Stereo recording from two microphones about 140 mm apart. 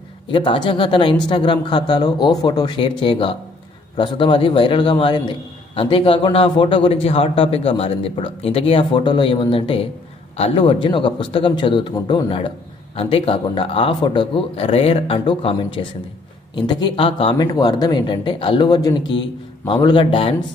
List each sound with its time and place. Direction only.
0.3 s a man's voice: 35° left (ahead or behind)
12.9 s a man's voice: 45° left (ahead or behind)
17.4 s a man's voice: 30° left (ahead or behind)
18.7 s a man's voice: 25° left (ahead or behind)